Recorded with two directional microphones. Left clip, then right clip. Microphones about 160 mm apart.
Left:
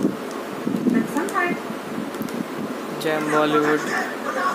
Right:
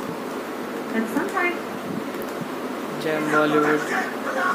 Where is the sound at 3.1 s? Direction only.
15° left (ahead or behind).